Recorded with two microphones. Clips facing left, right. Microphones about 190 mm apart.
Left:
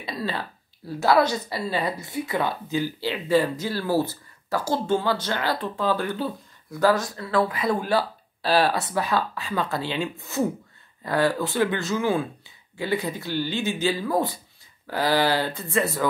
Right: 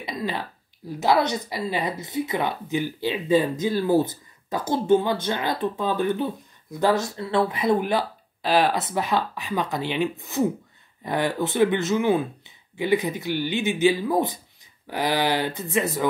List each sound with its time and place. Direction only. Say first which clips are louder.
0.0 s speech: right 1 dB; 15° right (ahead or behind)